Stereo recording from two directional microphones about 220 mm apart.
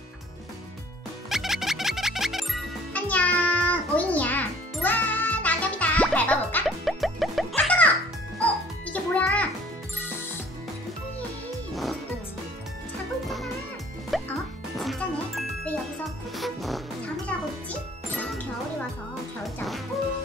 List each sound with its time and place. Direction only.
1.3 s music: centre (ahead or behind)
11.7 s music: centre (ahead or behind)
14.1 s music: centre (ahead or behind)